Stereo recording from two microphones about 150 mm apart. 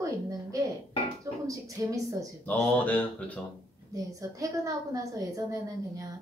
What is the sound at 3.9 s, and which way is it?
A woman's voice, 20° right (ahead or behind).